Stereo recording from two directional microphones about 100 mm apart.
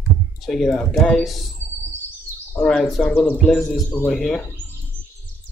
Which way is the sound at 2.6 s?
5° left (ahead or behind).